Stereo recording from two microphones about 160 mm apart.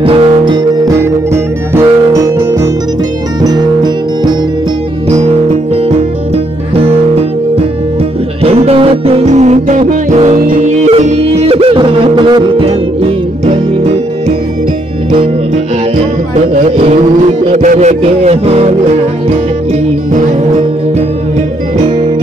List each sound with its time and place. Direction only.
0.0 s music: 35° right (ahead or behind)
0.8 s music: 15° right (ahead or behind)
8.4 s music: 40° right (ahead or behind)
16.7 s music: 40° right (ahead or behind)